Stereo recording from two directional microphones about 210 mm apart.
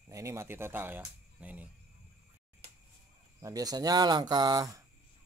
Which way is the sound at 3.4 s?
15° right (ahead or behind).